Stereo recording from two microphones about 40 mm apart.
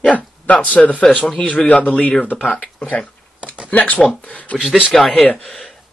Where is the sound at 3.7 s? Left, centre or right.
Left.